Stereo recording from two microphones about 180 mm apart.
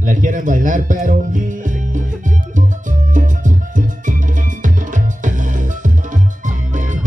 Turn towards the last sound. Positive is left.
turn(degrees=-45)  # may be behind; listen again after turning